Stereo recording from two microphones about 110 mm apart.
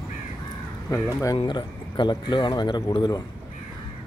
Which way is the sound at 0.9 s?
25° left (ahead or behind).